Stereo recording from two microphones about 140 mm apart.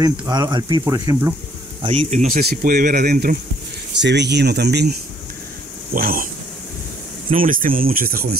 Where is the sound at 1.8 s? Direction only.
40° right (ahead or behind).